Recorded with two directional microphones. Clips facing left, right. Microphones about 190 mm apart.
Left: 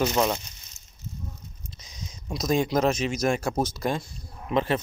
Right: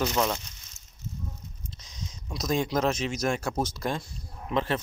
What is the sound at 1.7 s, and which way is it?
Speech, 10° left (ahead or behind).